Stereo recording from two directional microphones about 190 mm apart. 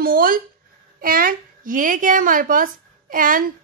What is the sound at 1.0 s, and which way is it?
A woman's voice, 50° right (ahead or behind).